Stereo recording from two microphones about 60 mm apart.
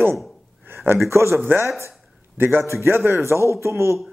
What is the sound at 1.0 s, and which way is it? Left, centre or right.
A man's voice, right.